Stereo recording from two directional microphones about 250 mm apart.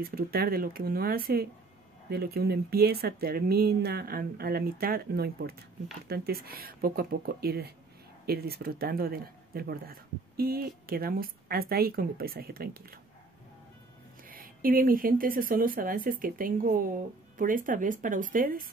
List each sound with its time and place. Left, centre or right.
0.0 s speech: right
14.3 s speech: right